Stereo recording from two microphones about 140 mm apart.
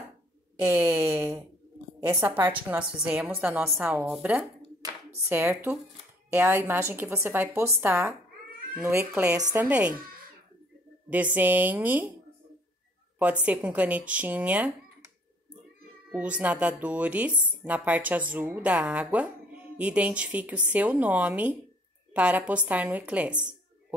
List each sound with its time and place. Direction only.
0.6 s speech: 15° right (ahead or behind)
9.6 s speech: 10° right (ahead or behind)
11.3 s speech: 10° right (ahead or behind)
13.2 s speech: 10° right (ahead or behind)
16.1 s speech: 10° right (ahead or behind)